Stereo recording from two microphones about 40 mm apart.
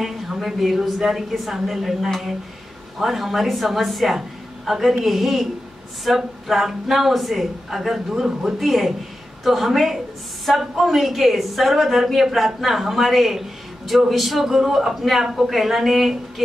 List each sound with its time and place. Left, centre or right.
0.0 s a woman's voice: centre